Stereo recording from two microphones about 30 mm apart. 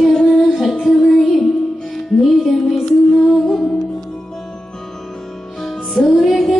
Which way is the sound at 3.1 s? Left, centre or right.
Centre.